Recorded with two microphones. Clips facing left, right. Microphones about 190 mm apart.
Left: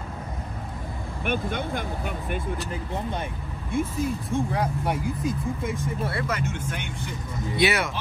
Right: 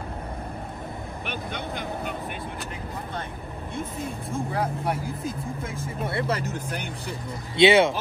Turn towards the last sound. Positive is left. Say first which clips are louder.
# right 6 dB
turn(degrees=-25)  # may be behind; listen again after turning